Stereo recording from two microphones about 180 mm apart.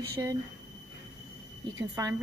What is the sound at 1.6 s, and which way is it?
Speech, 20° right (ahead or behind).